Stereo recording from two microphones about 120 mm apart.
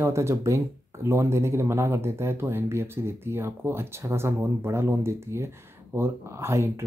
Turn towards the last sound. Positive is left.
turn(degrees=-25)  # may be behind; listen again after turning